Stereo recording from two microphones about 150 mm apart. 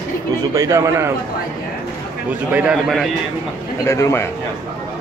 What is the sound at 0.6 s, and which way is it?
Speech, 20° right (ahead or behind).